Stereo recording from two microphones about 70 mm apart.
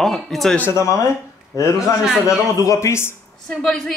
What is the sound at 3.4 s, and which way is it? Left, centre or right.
Speech, centre.